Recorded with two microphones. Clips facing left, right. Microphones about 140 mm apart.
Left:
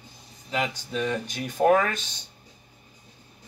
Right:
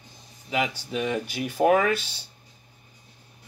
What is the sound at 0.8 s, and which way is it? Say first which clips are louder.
Speech: right 1 dB; 10° right (ahead or behind).